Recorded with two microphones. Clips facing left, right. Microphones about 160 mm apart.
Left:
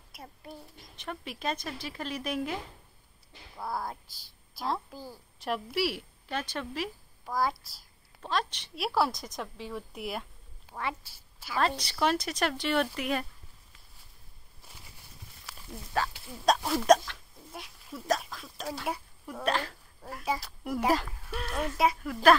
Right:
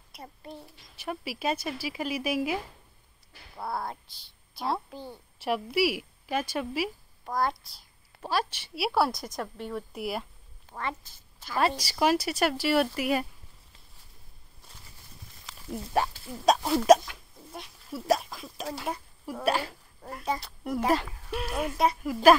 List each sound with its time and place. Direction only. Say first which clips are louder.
0.1 s a child's voice: right 2 dB; centre (ahead or behind)
7.3 s a child's voice: right 1 dB; 5° left (ahead or behind)
8.2 s a woman's voice: right 2 dB; 10° right (ahead or behind)
10.7 s speech: right 1 dB; 10° left (ahead or behind)
11.5 s speech: right 2 dB; 10° right (ahead or behind)
15.7 s speech: right 4 dB; 20° right (ahead or behind)
16.4 s a woman's voice: right 3 dB; 5° right (ahead or behind)
17.1 s pig: right 2 dB; 5° right (ahead or behind)
19.2 s speech: right 3 dB; 10° right (ahead or behind)
21.3 s speech: right 3 dB; 10° right (ahead or behind)